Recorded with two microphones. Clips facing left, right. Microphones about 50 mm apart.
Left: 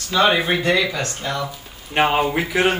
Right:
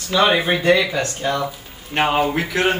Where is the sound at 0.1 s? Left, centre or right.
Centre.